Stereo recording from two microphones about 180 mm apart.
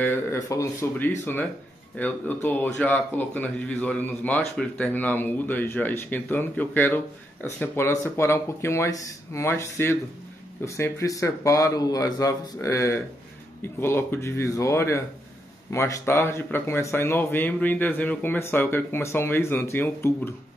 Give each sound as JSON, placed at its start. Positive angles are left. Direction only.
{"t": 0.0, "sound": "speech", "side_deg": 10}